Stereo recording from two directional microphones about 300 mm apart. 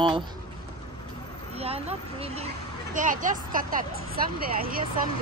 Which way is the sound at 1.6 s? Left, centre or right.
Centre.